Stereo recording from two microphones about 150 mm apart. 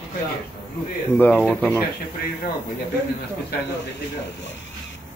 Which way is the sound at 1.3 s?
5° right (ahead or behind).